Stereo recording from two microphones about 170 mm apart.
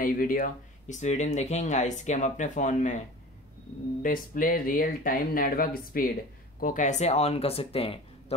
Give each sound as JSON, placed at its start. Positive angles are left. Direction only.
{"t": 0.0, "sound": "speech", "side_deg": 55}
{"t": 4.0, "sound": "speech", "side_deg": 55}